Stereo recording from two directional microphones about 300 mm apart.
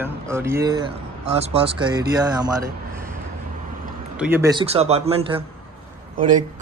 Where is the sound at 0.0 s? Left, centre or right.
Centre.